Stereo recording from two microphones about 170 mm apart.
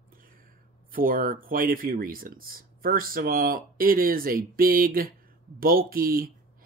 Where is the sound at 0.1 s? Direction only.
55° right (ahead or behind).